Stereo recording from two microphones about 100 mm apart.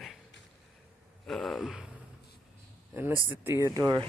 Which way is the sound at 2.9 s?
25° right (ahead or behind).